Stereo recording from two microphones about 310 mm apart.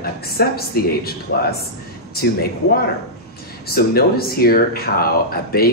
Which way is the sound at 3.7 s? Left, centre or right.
Left.